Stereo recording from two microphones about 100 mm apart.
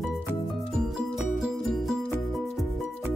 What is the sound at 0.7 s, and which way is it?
Music, 5° right (ahead or behind).